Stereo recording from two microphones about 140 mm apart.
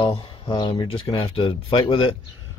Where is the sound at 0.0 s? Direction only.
35° left (ahead or behind).